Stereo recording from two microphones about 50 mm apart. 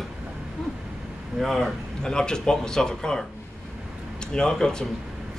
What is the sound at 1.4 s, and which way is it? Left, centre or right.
Speech, centre.